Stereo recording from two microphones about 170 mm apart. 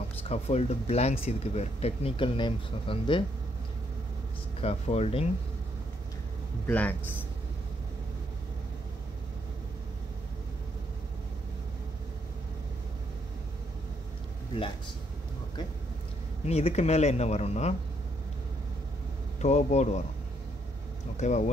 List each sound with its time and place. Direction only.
0.2 s speech: 35° left (ahead or behind)
4.6 s speech: 35° left (ahead or behind)
6.7 s a man's voice: 10° left (ahead or behind)
16.4 s speech: 35° left (ahead or behind)
19.4 s speech: 40° left (ahead or behind)
21.2 s speech: 45° left (ahead or behind)